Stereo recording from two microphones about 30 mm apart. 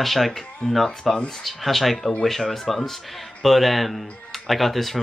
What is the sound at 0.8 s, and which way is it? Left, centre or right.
Speech, centre.